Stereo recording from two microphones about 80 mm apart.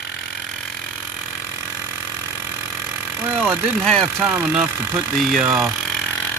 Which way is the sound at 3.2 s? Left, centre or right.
Right.